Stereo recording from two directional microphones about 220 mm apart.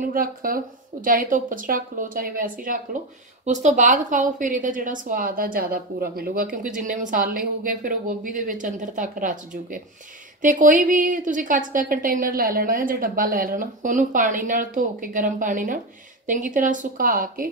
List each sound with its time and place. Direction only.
0.1 s a woman's voice: 40° right (ahead or behind)